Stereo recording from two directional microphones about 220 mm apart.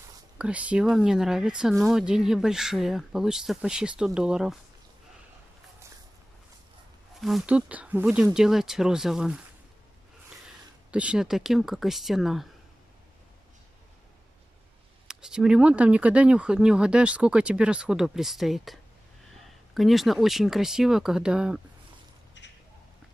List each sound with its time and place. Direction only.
0.4 s speech: 5° right (ahead or behind)
7.2 s speech: centre (ahead or behind)
10.9 s speech: 5° right (ahead or behind)
15.0 s speech: 5° right (ahead or behind)
22.4 s a sound: 55° left (ahead or behind)